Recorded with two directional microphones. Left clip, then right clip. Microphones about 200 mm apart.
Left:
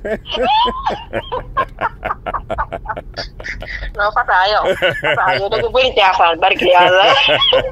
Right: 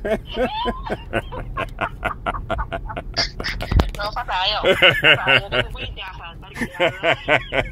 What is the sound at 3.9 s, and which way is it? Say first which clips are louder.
Speech: left 14 dB; 20° left (ahead or behind).